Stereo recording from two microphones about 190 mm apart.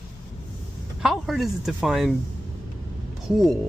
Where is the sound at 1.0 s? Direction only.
Centre (ahead or behind).